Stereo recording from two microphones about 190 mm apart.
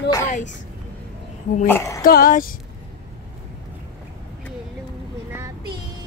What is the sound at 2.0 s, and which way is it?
Speech, 50° left (ahead or behind).